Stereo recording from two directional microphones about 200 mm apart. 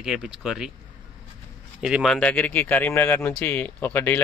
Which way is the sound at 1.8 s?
5° right (ahead or behind).